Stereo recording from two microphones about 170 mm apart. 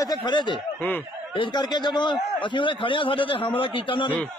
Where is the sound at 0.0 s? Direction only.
25° left (ahead or behind).